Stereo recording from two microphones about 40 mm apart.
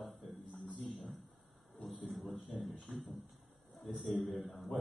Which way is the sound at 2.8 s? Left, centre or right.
Centre.